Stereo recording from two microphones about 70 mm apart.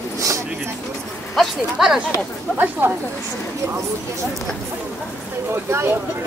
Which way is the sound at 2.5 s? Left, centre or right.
Right.